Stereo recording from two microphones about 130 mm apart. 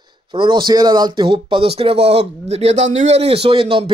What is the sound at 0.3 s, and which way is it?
Speech, 40° right (ahead or behind).